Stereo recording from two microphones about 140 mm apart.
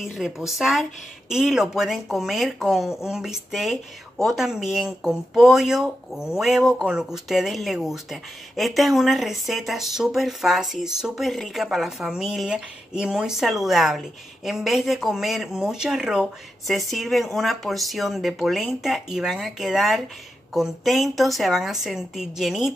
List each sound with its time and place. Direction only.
0.0 s speech: centre (ahead or behind)